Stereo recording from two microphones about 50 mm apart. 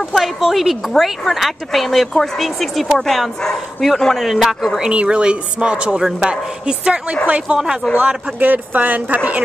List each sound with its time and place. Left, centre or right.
0.1 s speech: centre
4.9 s a woman's voice: right
8.4 s speech: right